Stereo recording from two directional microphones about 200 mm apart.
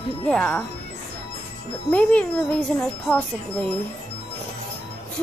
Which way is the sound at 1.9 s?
5° left (ahead or behind).